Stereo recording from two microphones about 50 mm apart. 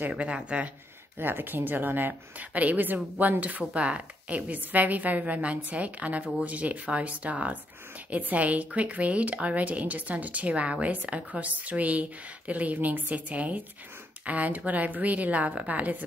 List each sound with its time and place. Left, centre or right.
0.2 s speech: right
1.1 s a woman's voice: right